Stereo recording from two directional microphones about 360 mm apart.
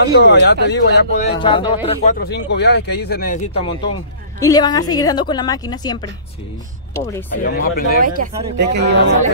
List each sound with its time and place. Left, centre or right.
0.0 s speech: left
2.1 s a woman's voice: left; by 5.9 s centre
7.5 s speech: left
8.0 s speech: right